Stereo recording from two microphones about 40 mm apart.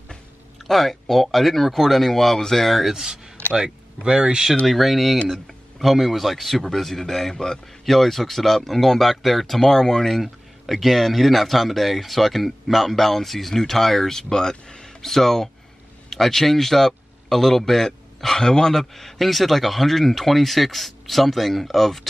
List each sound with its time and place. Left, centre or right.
0.7 s a man's voice: centre
2.8 s speech: centre
3.5 s speech: right
4.6 s a man's voice: centre
7.8 s a man's voice: centre
10.2 s a man's voice: centre
15.0 s a man's voice: centre